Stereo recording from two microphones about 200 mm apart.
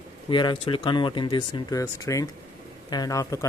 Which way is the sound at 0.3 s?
25° left (ahead or behind).